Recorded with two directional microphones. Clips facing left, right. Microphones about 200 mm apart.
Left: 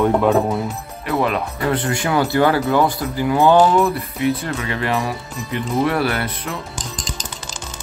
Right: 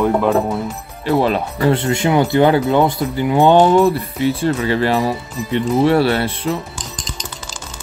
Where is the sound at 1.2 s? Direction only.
30° right (ahead or behind).